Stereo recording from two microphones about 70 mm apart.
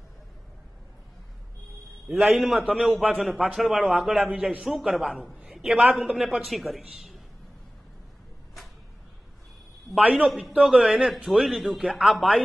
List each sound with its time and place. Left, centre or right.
2.3 s a man's voice: centre
9.9 s a man's voice: centre
10.2 s a man's voice: centre